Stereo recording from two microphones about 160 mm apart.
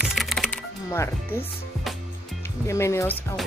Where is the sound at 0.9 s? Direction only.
15° left (ahead or behind).